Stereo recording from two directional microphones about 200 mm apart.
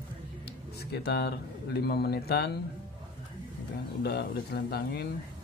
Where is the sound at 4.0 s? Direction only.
50° left (ahead or behind).